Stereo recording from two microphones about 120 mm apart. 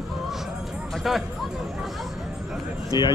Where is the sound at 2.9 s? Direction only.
35° left (ahead or behind).